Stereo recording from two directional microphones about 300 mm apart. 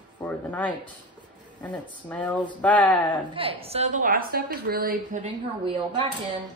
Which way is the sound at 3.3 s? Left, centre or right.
Centre.